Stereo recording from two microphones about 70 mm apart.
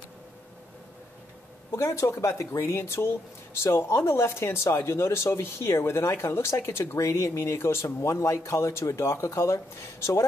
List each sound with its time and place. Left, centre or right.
1.8 s speech: left